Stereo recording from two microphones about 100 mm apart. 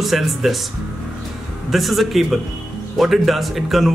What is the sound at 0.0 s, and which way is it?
Speech, centre (ahead or behind).